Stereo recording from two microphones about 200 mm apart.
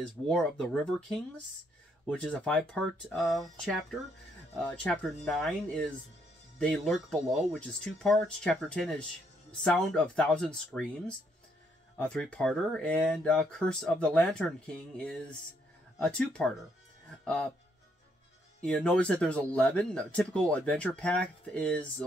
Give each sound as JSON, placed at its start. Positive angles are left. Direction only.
{"t": 0.3, "sound": "speech", "side_deg": 5}
{"t": 12.0, "sound": "speech", "side_deg": 5}
{"t": 16.0, "sound": "speech", "side_deg": 5}
{"t": 18.6, "sound": "speech", "side_deg": 5}